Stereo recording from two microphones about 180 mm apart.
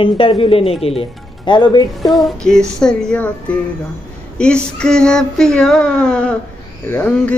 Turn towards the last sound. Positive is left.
turn(degrees=5)  # may be behind; listen again after turning